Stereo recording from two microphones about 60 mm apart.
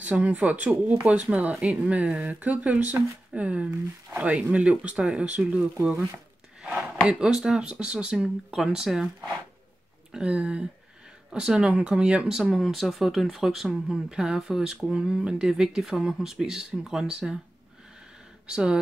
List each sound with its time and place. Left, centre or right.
0.0 s speech: right
7.1 s speech: centre
10.1 s speech: centre
12.4 s speech: centre
18.5 s speech: centre